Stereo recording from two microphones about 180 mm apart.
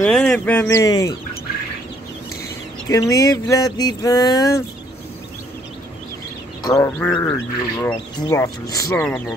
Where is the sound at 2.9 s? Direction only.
20° left (ahead or behind).